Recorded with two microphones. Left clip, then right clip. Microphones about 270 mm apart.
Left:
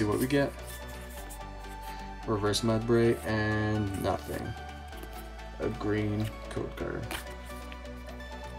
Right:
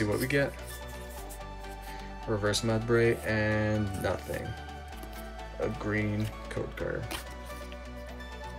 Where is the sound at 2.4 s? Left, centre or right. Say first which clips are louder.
Even; centre.